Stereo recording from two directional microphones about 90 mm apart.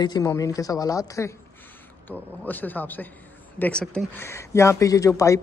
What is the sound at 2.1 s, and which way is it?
Speech, 20° left (ahead or behind).